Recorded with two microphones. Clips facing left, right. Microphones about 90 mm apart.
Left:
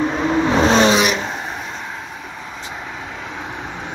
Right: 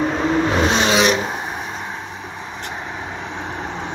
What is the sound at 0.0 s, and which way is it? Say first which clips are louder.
Vehicle: even; centre (ahead or behind).